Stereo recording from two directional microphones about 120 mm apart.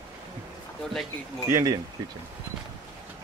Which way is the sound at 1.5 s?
25° right (ahead or behind).